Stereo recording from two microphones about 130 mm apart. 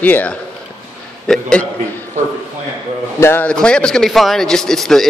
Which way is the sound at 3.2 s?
20° left (ahead or behind).